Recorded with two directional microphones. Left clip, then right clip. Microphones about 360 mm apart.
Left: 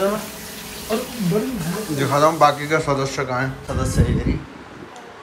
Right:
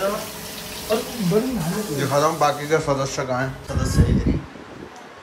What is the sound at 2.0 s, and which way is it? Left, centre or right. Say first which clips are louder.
A man's voice: left 4 dB; centre.